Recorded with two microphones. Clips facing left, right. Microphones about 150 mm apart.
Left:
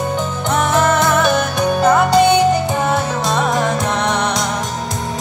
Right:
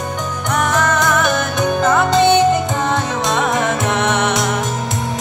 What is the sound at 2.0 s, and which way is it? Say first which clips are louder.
Music: left 1 dB; 20° right (ahead or behind).